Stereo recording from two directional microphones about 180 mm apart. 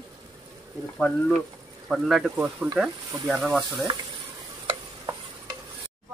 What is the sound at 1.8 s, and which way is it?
Speech, centre (ahead or behind).